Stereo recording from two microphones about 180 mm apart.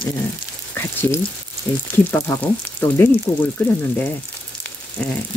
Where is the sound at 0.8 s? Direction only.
10° left (ahead or behind).